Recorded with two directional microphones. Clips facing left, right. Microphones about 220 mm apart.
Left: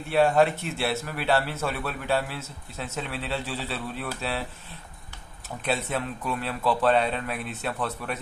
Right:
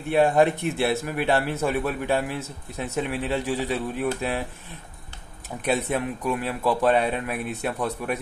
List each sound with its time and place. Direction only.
0.1 s a man's voice: 15° right (ahead or behind)
5.6 s a man's voice: 15° right (ahead or behind)